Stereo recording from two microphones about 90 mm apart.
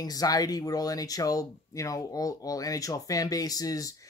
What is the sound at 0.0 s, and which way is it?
Speech, 45° left (ahead or behind).